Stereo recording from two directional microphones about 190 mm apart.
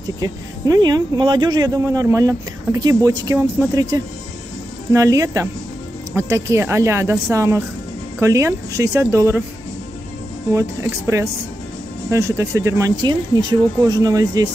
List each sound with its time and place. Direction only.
0.2 s speech: 20° right (ahead or behind)
10.5 s speech: 15° right (ahead or behind)